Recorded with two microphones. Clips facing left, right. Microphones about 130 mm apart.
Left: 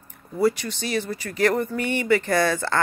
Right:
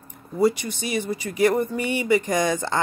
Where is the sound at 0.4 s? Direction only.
15° right (ahead or behind).